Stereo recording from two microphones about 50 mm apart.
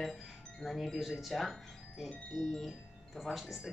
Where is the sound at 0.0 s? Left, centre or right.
Centre.